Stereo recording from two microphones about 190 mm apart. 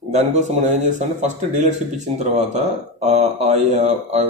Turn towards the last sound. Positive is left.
turn(degrees=-35)  # may be behind; listen again after turning